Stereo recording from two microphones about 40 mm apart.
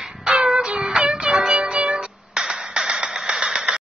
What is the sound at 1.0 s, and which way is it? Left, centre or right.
Music, right.